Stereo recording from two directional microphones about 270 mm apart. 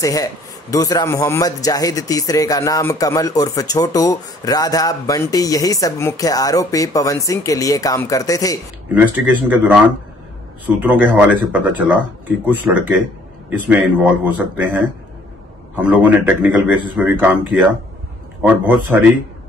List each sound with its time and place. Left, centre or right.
0.0 s speech: centre
8.9 s a man's voice: centre
10.8 s a man's voice: centre
15.7 s a man's voice: centre